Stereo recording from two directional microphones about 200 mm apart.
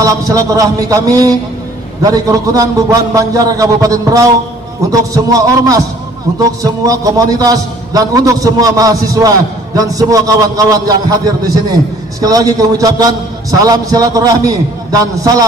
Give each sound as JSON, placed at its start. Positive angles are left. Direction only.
{"t": 0.0, "sound": "a man's voice", "side_deg": -15}